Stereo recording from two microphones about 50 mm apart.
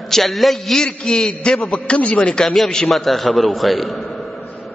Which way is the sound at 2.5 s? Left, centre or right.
Centre.